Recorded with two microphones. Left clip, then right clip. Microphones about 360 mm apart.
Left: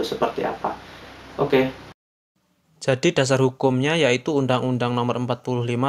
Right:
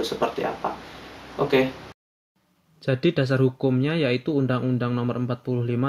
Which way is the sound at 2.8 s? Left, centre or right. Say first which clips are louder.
Left 4 dB; left.